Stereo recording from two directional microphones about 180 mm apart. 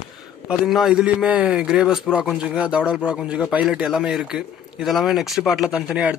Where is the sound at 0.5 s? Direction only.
Centre (ahead or behind).